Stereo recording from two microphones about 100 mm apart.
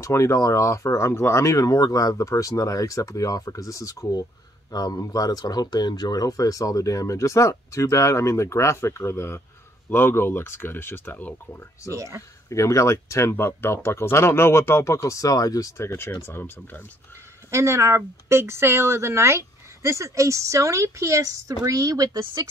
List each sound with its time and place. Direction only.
0.0 s speech: 30° left (ahead or behind)
11.9 s speech: 30° right (ahead or behind)
12.2 s speech: 30° left (ahead or behind)
15.9 s speech: 20° left (ahead or behind)
17.5 s speech: 30° right (ahead or behind)